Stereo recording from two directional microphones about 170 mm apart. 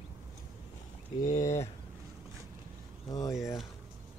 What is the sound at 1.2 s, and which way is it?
Speech, 45° left (ahead or behind).